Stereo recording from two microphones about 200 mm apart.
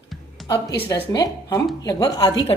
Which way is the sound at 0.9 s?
20° left (ahead or behind).